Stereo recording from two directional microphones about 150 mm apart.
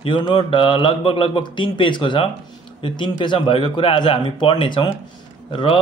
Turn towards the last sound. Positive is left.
turn(degrees=35)  # may be behind; listen again after turning